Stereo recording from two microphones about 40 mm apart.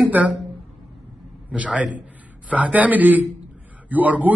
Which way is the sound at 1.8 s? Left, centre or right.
Right.